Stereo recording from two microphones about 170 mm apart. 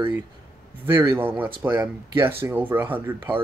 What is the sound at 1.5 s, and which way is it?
Speech, 25° right (ahead or behind).